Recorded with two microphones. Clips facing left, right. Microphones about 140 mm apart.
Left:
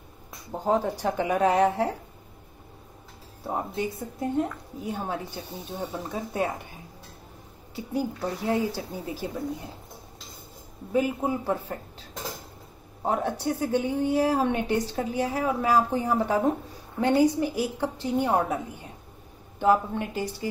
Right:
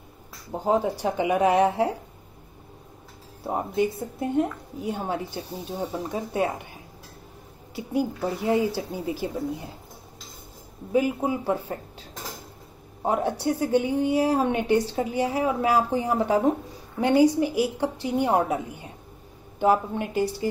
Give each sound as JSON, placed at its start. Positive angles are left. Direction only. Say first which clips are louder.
{"t": 0.5, "sound": "a woman's voice", "louder": "right 2 dB", "side_deg": -10}
{"t": 3.4, "sound": "a woman's voice", "louder": "right 5 dB", "side_deg": -15}
{"t": 5.7, "sound": "speech", "louder": "right 3 dB", "side_deg": 0}
{"t": 7.7, "sound": "speech", "louder": "right 3 dB", "side_deg": -10}
{"t": 10.9, "sound": "a woman's voice", "louder": "right 2 dB", "side_deg": -10}
{"t": 13.0, "sound": "a woman's voice", "louder": "right 2 dB", "side_deg": -15}
{"t": 19.6, "sound": "a woman's voice", "louder": "right 1 dB", "side_deg": -10}